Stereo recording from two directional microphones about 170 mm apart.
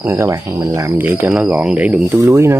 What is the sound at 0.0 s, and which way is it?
Speech, 15° right (ahead or behind).